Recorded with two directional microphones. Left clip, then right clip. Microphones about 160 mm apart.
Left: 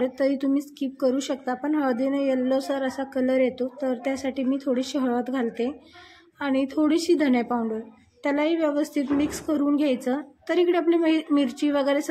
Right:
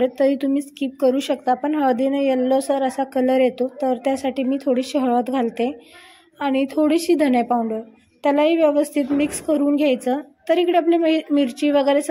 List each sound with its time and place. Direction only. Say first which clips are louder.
0.0 s a woman's voice: right 6 dB; 15° right (ahead or behind)